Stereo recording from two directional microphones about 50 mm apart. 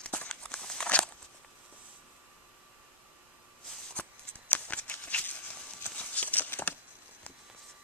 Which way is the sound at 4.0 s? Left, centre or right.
Left.